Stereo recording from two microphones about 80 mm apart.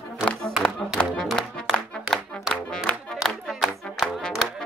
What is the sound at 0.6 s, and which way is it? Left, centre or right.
Music, centre.